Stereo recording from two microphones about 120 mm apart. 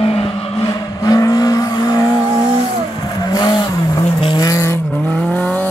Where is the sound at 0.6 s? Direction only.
30° left (ahead or behind).